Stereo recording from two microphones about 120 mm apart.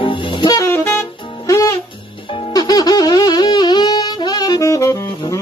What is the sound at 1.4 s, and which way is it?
Music, 25° left (ahead or behind).